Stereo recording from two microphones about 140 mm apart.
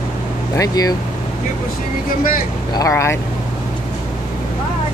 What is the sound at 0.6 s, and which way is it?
Speech, 25° left (ahead or behind).